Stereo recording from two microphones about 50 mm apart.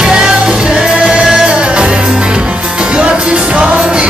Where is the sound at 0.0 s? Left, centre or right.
Centre.